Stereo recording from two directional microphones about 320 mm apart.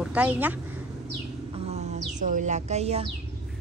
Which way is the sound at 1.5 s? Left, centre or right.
Centre.